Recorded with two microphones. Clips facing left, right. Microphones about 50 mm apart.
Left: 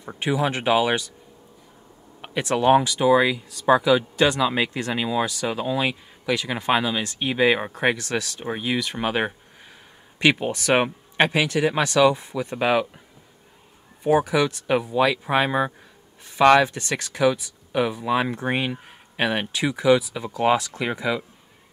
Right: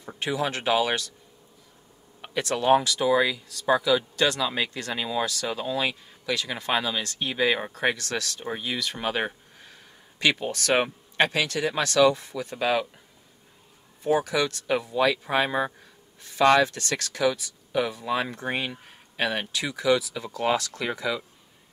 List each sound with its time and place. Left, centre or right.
0.0 s speech: centre
2.2 s speech: centre
14.0 s speech: centre